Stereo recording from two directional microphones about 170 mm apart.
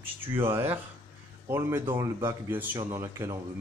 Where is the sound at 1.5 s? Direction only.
15° right (ahead or behind).